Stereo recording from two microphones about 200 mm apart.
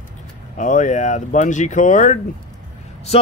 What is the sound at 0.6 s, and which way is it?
Speech, 40° left (ahead or behind).